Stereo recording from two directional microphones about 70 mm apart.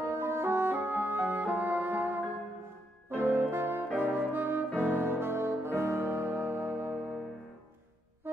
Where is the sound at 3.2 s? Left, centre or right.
Right.